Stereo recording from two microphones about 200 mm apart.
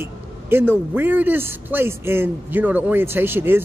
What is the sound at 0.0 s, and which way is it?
A man's voice, 10° right (ahead or behind).